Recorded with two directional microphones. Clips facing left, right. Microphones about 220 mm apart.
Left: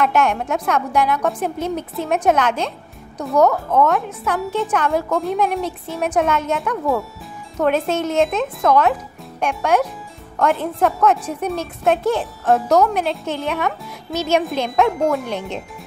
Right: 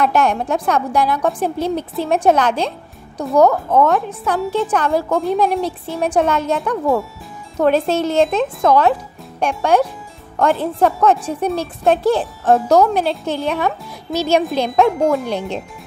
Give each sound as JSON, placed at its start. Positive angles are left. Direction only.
{"t": 0.0, "sound": "a woman's voice", "side_deg": -35}